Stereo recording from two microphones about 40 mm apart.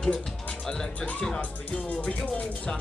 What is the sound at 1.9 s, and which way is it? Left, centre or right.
Music, left.